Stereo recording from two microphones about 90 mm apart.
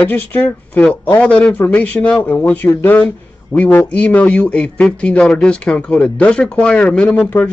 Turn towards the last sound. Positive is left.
turn(degrees=15)  # may be behind; listen again after turning